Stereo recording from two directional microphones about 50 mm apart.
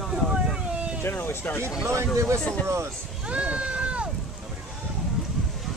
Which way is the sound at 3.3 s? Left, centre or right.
Right.